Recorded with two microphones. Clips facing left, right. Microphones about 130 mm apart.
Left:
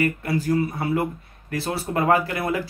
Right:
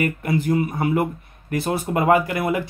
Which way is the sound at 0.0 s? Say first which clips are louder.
Right 1 dB; 20° right (ahead or behind).